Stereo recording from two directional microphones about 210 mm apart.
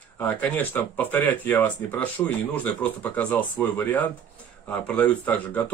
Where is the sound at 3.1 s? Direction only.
10° left (ahead or behind).